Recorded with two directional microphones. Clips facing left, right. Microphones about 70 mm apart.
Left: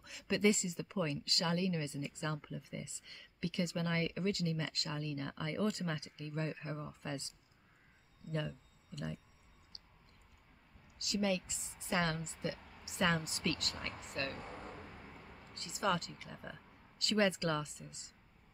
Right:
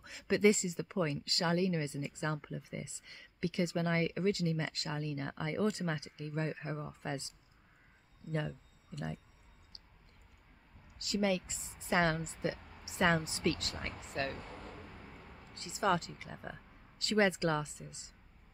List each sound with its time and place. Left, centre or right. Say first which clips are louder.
0.0 s speech: right 4 dB; right
8.3 s speech: right 2 dB; right
11.1 s speech: right 2 dB; right
14.4 s a sound: left 1 dB; centre
15.5 s speech: right 3 dB; right